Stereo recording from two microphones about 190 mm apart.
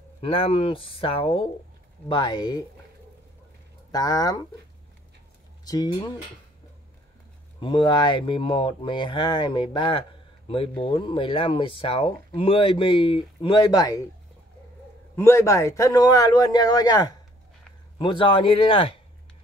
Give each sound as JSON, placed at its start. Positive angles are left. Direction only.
{"t": 0.2, "sound": "speech", "side_deg": 30}
{"t": 3.9, "sound": "speech", "side_deg": 20}
{"t": 5.7, "sound": "speech", "side_deg": 20}
{"t": 7.6, "sound": "speech", "side_deg": 25}
{"t": 15.1, "sound": "speech", "side_deg": 15}